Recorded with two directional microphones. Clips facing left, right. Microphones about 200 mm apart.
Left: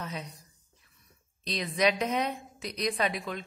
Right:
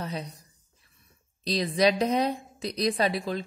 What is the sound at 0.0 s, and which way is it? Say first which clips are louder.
Speech: right 4 dB; 35° right (ahead or behind).